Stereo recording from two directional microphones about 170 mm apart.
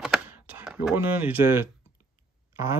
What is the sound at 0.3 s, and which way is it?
Speech, 10° right (ahead or behind).